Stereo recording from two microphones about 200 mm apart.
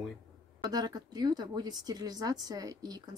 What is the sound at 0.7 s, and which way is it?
Speech, 20° right (ahead or behind).